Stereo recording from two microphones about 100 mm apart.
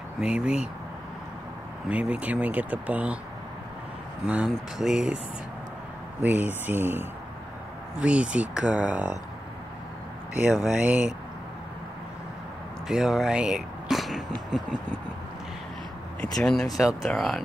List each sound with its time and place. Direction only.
0.2 s speech: 10° right (ahead or behind)
1.9 s speech: 10° right (ahead or behind)
4.5 s speech: 5° right (ahead or behind)
6.2 s speech: 15° right (ahead or behind)
10.3 s speech: 10° right (ahead or behind)
12.8 s speech: 5° right (ahead or behind)
14.3 s a sound: 10° left (ahead or behind)
16.2 s speech: 5° left (ahead or behind)